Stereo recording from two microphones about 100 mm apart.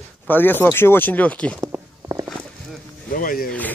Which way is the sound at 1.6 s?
30° right (ahead or behind).